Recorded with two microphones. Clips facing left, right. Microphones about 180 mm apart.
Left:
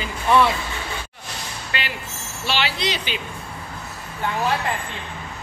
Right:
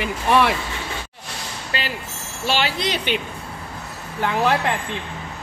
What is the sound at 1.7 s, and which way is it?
Speech, 35° right (ahead or behind).